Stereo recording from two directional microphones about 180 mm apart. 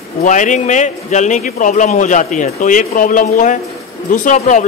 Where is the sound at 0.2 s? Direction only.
45° left (ahead or behind).